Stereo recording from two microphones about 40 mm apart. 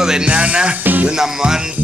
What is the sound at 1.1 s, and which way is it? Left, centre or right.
Speech, centre.